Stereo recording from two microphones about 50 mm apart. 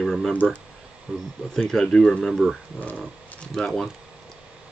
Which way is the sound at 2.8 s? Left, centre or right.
Left.